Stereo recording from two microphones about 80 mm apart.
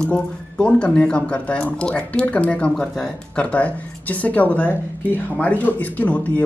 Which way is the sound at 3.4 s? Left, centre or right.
Centre.